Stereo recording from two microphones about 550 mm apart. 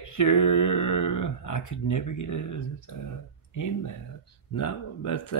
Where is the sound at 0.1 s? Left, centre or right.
Left.